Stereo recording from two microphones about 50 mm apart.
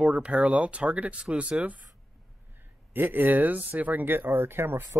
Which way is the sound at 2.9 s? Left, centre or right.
Right.